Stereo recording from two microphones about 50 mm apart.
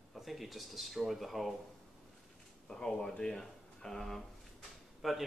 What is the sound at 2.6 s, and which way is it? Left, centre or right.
Speech, centre.